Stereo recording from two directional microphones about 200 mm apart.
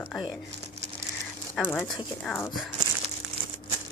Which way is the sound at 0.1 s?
5° right (ahead or behind).